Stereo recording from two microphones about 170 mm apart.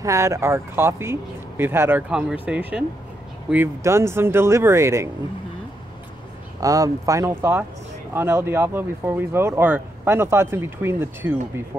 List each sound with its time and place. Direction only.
0.0 s speech: 15° right (ahead or behind)
6.6 s speech: 20° right (ahead or behind)